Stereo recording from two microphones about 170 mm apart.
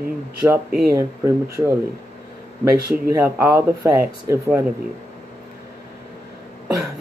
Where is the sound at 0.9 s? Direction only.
20° right (ahead or behind).